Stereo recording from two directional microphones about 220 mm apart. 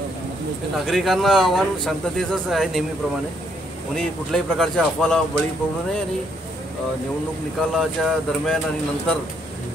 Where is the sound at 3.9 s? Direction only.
5° left (ahead or behind).